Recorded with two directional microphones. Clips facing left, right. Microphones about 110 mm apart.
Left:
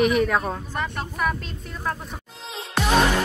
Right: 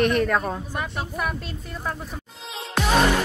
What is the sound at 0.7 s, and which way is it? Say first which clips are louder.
Music: even; 10° right (ahead or behind).